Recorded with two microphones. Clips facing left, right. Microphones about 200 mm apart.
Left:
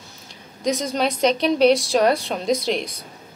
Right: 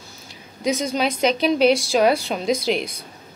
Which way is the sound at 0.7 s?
Centre (ahead or behind).